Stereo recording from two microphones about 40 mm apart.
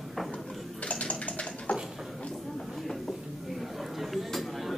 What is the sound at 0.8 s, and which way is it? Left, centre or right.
Bathtub, left.